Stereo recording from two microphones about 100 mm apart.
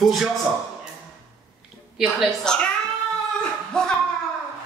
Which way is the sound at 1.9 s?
Centre (ahead or behind).